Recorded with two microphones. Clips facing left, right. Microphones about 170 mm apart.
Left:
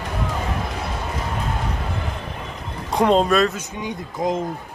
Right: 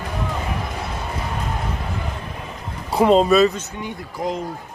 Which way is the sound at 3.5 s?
20° left (ahead or behind).